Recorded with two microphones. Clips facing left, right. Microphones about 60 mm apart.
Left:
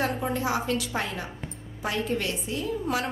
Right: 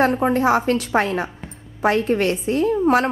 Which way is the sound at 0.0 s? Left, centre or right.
Right.